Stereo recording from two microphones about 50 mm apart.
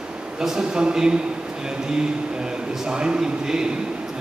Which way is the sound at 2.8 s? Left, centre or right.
Centre.